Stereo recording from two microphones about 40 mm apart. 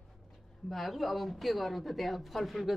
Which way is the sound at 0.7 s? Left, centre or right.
Centre.